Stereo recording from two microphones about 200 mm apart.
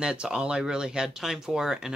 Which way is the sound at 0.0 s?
5° right (ahead or behind).